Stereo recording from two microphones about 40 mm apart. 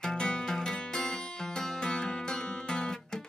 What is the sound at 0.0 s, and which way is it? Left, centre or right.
Music, centre.